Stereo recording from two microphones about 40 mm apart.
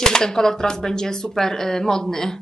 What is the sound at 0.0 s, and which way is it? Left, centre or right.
A woman's voice, centre.